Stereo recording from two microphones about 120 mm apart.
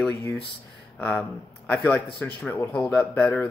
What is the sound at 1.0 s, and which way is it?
Speech, 10° left (ahead or behind).